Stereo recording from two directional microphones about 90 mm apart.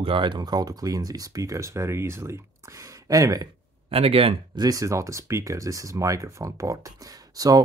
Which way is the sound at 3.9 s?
90° right.